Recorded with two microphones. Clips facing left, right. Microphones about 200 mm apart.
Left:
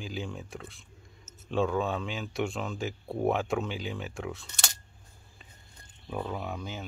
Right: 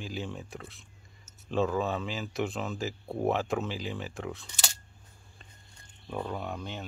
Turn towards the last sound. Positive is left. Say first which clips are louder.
# even
turn(degrees=0)  # may be behind; listen again after turning